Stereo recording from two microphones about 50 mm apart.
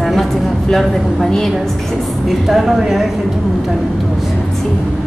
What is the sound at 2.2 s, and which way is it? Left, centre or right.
Speech, centre.